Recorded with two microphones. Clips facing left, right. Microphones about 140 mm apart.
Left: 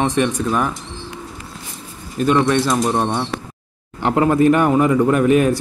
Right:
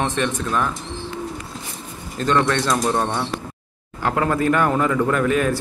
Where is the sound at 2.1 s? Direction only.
15° left (ahead or behind).